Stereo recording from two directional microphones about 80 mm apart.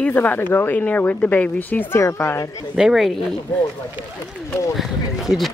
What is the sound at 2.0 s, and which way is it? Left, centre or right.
Speech, left.